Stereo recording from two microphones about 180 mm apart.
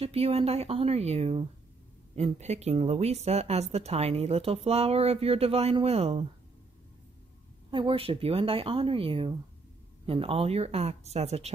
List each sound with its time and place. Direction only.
0.0 s speech: 35° right (ahead or behind)
7.7 s speech: 30° right (ahead or behind)